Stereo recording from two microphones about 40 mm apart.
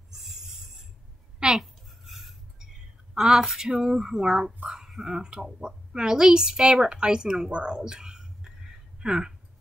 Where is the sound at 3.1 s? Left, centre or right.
Centre.